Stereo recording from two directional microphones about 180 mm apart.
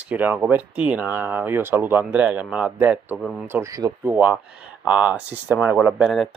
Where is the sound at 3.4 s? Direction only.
15° right (ahead or behind).